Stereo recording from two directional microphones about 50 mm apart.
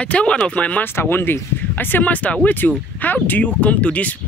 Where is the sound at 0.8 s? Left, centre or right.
Left.